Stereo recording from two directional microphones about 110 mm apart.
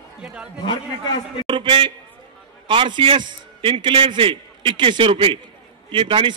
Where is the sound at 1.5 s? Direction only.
50° right (ahead or behind).